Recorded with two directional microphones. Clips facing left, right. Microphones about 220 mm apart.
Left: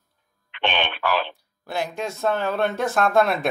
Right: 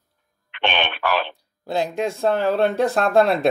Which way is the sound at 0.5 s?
65° right (ahead or behind).